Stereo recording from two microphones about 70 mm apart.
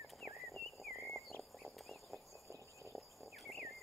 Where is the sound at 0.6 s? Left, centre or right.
Centre.